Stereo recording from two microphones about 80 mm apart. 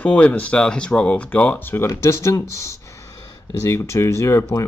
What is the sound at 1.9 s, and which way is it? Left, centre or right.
Speech, left.